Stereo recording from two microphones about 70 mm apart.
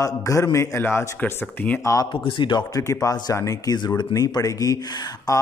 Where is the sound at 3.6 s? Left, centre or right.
Left.